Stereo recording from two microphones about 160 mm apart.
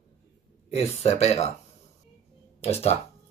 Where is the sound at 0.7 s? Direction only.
40° left (ahead or behind).